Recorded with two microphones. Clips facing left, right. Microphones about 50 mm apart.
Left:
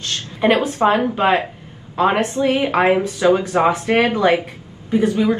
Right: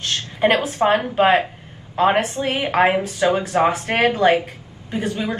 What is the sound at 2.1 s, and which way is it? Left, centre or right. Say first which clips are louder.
Speech: left 1 dB; left.